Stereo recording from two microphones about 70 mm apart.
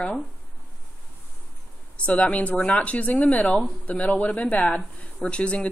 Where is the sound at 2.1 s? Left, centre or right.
Centre.